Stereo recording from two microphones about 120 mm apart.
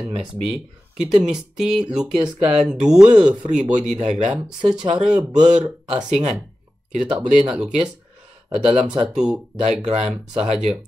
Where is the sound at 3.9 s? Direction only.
75° right (ahead or behind).